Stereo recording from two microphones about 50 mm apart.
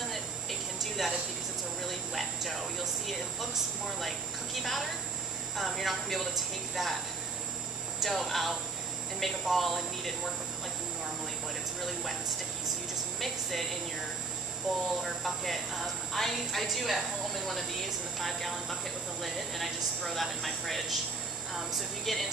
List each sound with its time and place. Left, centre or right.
0.1 s a sound: centre
1.9 s a woman's voice: centre
5.6 s a woman's voice: centre
8.0 s a woman's voice: centre
11.8 s a woman's voice: centre
13.2 s a woman's voice: centre
18.2 s a woman's voice: centre